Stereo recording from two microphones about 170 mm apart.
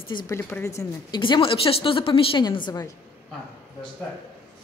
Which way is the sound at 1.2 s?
30° left (ahead or behind).